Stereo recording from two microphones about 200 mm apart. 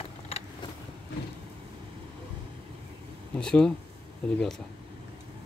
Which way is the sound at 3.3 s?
5° left (ahead or behind).